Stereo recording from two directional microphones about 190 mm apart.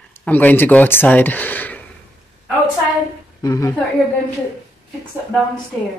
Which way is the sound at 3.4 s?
15° left (ahead or behind).